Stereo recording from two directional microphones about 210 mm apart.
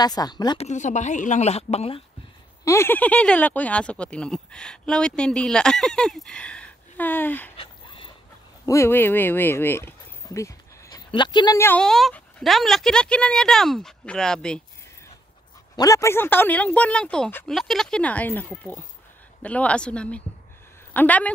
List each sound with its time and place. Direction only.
0.0 s a woman's voice: 20° left (ahead or behind)
0.7 s a woman's voice: 35° left (ahead or behind)
2.6 s speech: 10° left (ahead or behind)
7.5 s dog: 25° left (ahead or behind)
8.6 s speech: 15° left (ahead or behind)
15.7 s speech: 15° left (ahead or behind)